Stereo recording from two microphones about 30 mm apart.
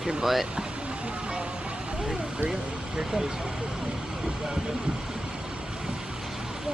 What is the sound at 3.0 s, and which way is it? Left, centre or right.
Speech, right.